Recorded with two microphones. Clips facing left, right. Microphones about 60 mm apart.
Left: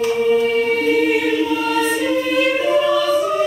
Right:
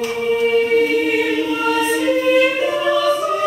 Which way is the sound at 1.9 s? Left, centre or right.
Centre.